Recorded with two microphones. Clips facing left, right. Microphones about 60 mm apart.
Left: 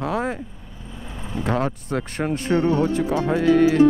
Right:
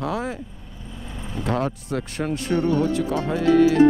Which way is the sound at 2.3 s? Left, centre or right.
Left.